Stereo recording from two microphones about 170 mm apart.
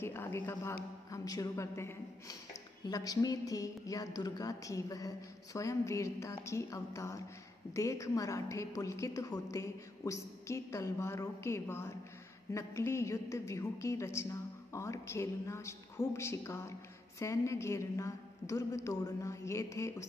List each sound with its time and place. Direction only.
0.0 s a woman's voice: 15° left (ahead or behind)